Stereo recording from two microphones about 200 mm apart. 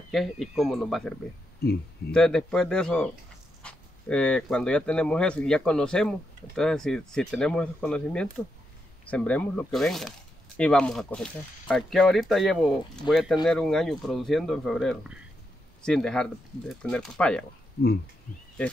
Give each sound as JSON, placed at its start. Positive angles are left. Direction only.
{"t": 0.1, "sound": "speech", "side_deg": 0}
{"t": 1.6, "sound": "speech", "side_deg": 50}
{"t": 2.0, "sound": "speech", "side_deg": 5}